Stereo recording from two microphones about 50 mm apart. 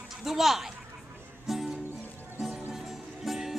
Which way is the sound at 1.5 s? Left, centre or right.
Centre.